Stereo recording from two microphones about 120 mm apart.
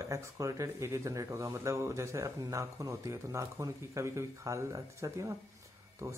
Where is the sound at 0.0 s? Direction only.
25° right (ahead or behind).